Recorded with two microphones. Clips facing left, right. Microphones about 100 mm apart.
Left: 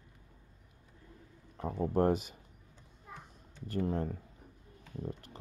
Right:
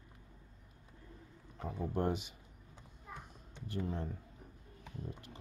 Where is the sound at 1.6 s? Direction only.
45° left (ahead or behind).